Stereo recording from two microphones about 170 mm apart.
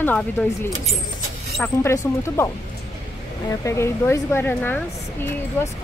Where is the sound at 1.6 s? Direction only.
15° left (ahead or behind).